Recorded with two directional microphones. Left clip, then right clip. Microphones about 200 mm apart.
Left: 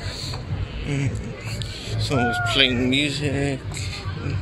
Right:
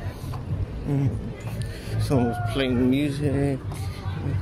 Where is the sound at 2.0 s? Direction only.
30° right (ahead or behind).